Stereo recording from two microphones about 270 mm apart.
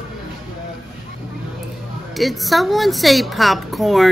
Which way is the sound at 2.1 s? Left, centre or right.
Centre.